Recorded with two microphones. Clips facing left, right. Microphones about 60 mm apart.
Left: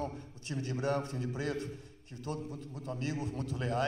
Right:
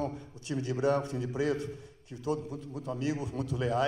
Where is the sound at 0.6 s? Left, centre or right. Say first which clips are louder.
Right 5 dB; left.